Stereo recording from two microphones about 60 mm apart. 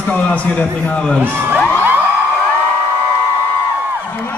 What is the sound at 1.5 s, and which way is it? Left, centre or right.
Music, left.